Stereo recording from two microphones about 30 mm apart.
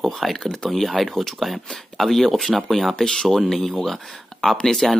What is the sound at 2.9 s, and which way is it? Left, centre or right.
Speech, left.